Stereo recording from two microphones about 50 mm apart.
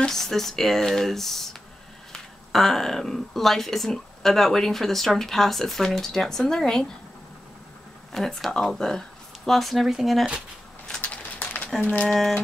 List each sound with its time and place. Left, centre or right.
0.0 s speech: centre
8.1 s speech: centre
9.5 s speech: centre
11.0 s a sound: left
12.1 s speech: centre